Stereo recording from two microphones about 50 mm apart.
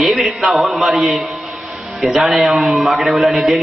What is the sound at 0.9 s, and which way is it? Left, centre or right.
Speech, centre.